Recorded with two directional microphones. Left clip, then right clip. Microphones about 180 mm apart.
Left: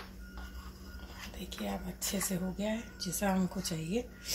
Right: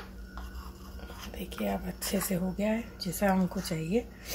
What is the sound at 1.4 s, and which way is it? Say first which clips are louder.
Speech: right 6 dB; 35° right (ahead or behind).